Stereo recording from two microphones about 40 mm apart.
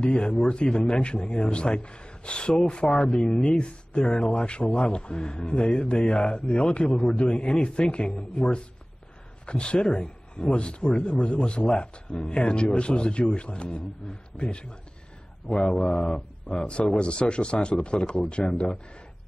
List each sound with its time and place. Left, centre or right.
0.0 s speech: left
4.0 s speech: centre; by 6.6 s left
6.9 s a man's voice: centre
7.2 s speech: left